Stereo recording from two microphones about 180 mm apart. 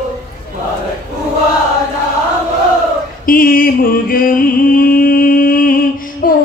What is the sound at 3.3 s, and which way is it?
Music, 50° left (ahead or behind).